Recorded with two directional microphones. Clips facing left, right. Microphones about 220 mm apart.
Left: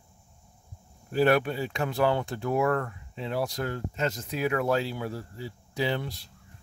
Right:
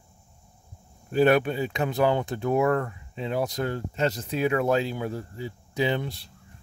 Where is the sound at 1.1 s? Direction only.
20° right (ahead or behind).